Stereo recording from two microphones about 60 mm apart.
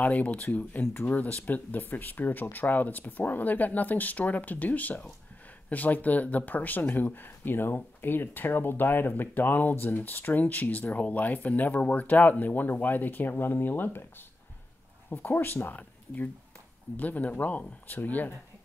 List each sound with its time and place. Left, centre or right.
0.0 s speech: left
15.0 s speech: left